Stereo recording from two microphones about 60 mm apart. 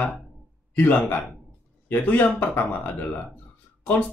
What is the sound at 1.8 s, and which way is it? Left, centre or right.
Speech, left.